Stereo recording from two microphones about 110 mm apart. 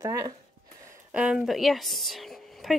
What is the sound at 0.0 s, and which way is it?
Speech, 35° right (ahead or behind).